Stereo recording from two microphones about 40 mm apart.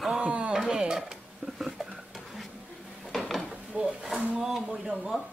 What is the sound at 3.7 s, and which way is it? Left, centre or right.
Speech, right.